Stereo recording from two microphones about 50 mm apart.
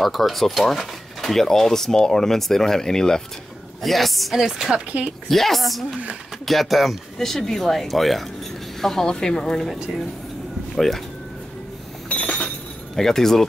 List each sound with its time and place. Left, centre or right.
0.0 s speech: centre
5.3 s speech: centre
12.1 s chink: left
12.9 s speech: centre